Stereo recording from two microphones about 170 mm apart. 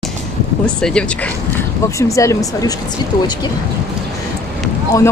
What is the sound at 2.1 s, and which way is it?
Speech, 20° left (ahead or behind).